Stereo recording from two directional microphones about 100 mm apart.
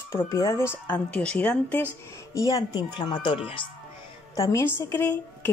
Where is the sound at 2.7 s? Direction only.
50° left (ahead or behind).